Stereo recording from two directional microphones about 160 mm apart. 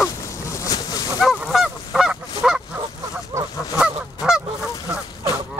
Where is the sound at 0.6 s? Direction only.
25° left (ahead or behind).